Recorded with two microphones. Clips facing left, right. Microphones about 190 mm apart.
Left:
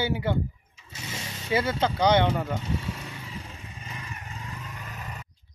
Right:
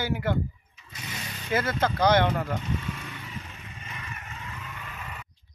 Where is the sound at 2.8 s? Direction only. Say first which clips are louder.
Even; 30° left (ahead or behind).